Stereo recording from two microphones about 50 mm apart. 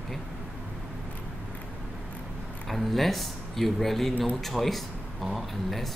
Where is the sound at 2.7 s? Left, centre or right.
Centre.